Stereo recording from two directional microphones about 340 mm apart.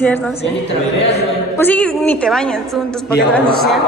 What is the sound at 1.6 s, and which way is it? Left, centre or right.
A woman's voice, centre.